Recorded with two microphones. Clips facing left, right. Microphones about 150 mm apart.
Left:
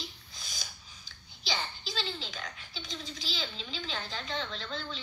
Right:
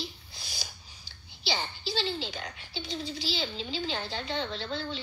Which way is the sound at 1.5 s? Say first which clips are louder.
Right 4 dB; 35° right (ahead or behind).